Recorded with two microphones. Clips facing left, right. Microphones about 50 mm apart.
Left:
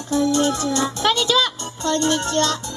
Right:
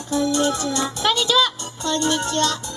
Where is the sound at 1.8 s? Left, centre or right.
Left.